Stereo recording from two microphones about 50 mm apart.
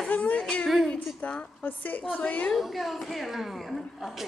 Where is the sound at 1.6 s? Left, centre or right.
Left.